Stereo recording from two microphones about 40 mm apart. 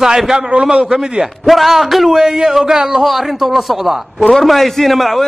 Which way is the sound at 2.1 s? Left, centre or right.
Centre.